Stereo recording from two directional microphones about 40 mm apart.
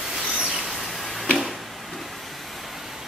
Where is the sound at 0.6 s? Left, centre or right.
Centre.